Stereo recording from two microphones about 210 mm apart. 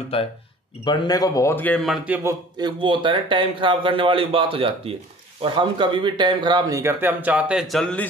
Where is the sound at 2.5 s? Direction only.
20° right (ahead or behind).